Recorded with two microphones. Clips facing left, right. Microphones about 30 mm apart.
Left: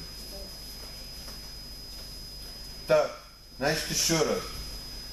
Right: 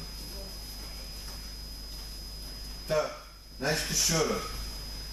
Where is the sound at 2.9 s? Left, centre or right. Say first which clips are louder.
Left 6 dB; left.